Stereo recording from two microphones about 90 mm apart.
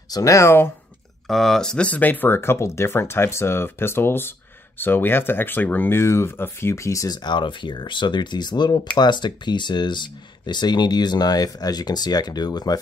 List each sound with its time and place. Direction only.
0.1 s speech: 35° left (ahead or behind)
1.2 s speech: 5° left (ahead or behind); by 7.2 s 40° left (ahead or behind)
7.2 s speech: 60° left (ahead or behind)